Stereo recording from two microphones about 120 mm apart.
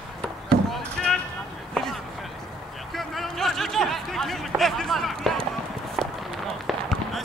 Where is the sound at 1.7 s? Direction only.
5° left (ahead or behind).